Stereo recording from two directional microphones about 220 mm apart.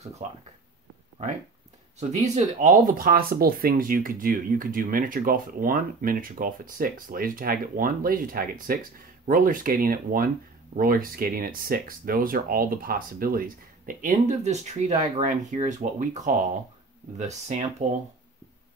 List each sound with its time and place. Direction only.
0.2 s speech: 30° right (ahead or behind)
2.2 s speech: 30° right (ahead or behind)